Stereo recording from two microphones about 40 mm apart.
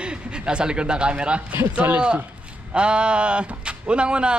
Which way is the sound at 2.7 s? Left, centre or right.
Right.